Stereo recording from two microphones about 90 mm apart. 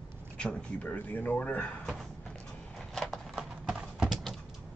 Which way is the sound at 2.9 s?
Centre (ahead or behind).